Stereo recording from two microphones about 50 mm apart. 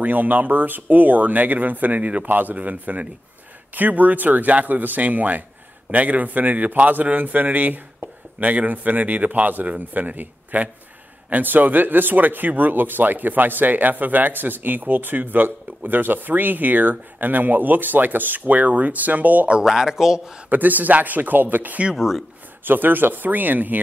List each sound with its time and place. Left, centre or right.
0.0 s speech: right
19.6 s speech: centre
20.4 s speech: right
21.9 s speech: centre
22.7 s speech: right